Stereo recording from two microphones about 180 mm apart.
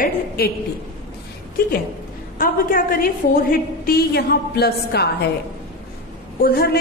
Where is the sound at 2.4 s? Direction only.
50° left (ahead or behind).